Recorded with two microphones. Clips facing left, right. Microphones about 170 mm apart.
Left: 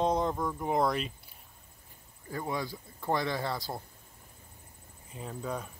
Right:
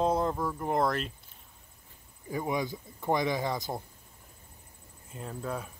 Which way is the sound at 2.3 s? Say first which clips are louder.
Right 3 dB; 15° right (ahead or behind).